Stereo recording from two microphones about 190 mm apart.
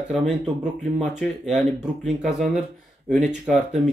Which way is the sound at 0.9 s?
Centre (ahead or behind).